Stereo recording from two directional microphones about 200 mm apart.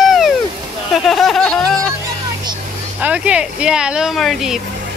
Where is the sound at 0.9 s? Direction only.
Centre (ahead or behind).